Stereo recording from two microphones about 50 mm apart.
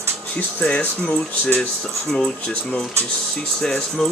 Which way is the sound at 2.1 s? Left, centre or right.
Centre.